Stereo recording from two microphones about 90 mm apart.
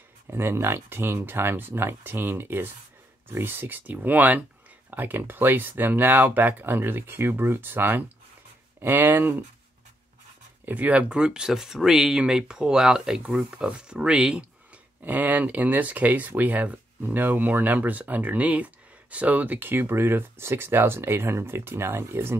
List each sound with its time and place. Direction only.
0.3 s speech: 25° right (ahead or behind)
10.6 s speech: 15° right (ahead or behind)